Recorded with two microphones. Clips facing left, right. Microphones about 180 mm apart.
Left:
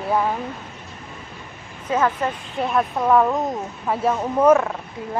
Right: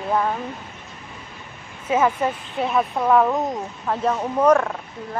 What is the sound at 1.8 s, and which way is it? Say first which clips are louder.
Speech: right 1 dB; 10° right (ahead or behind).